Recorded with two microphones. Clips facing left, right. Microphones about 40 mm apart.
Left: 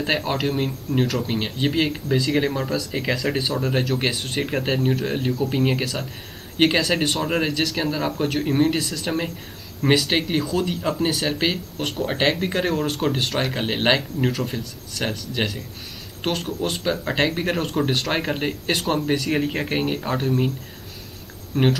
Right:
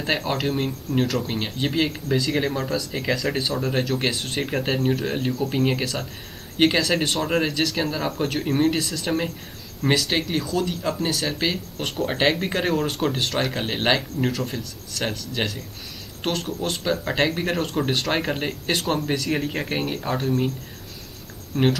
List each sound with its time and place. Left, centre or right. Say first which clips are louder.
0.0 s speech: left 1 dB; centre
11.8 s speech: even; centre
21.5 s speech: left 1 dB; left